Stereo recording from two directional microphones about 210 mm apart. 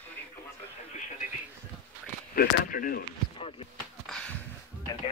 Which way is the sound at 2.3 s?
40° left (ahead or behind).